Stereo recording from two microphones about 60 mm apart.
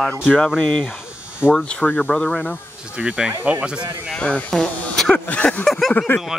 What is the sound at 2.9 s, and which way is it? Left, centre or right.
Speech, right.